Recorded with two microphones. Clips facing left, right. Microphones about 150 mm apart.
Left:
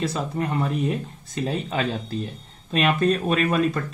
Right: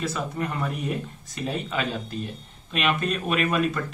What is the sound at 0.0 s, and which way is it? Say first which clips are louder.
Speech: left 3 dB; 30° left (ahead or behind).